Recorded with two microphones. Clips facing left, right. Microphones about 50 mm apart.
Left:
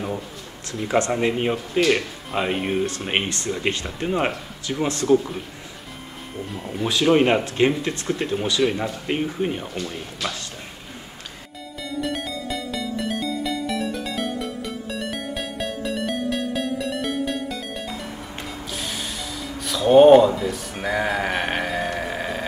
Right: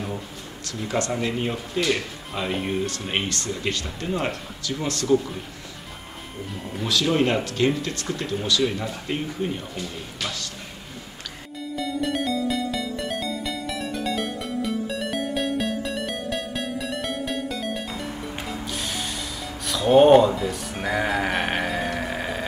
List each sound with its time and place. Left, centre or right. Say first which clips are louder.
0.8 s speech: left 5 dB; left
3.1 s speech: left 3 dB; left
6.9 s speech: left 4 dB; left
11.7 s music: right 1 dB; centre